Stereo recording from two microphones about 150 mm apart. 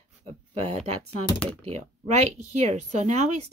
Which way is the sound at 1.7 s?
50° right (ahead or behind).